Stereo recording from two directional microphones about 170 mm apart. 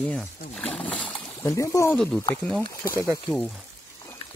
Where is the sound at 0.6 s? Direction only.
5° left (ahead or behind).